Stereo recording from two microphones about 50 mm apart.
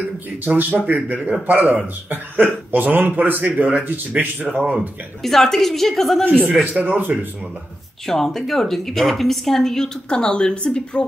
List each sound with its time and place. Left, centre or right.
0.5 s speech: right
5.2 s a woman's voice: centre
6.4 s speech: right
8.1 s a woman's voice: centre